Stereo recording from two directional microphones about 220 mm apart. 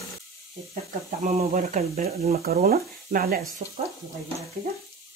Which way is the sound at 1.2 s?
35° right (ahead or behind).